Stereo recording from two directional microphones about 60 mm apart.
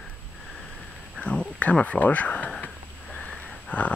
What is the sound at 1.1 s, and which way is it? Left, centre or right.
Speech, centre.